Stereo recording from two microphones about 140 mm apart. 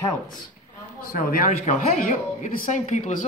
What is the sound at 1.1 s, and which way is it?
Speech, 80° left.